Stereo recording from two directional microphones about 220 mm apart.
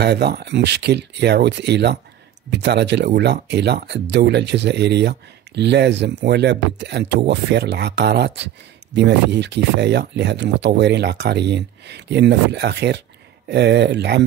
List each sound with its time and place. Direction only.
0.0 s speech: 50° right (ahead or behind)